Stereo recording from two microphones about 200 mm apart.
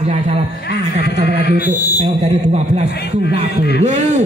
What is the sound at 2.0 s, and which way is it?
Speech, 35° right (ahead or behind).